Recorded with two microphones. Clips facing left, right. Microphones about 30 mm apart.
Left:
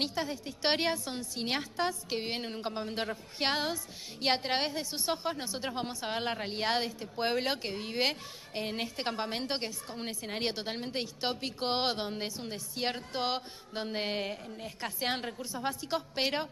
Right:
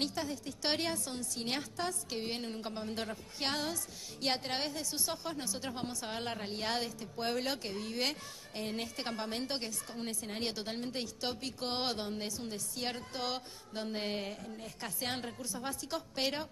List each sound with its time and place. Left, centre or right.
0.0 s a woman's voice: left